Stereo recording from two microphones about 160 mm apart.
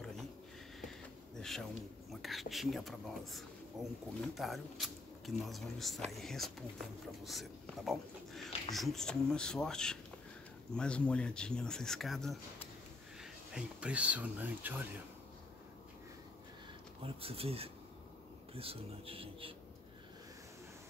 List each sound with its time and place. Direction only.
0.7 s a sound: centre (ahead or behind)
2.0 s speech: centre (ahead or behind)
17.0 s speech: 35° right (ahead or behind)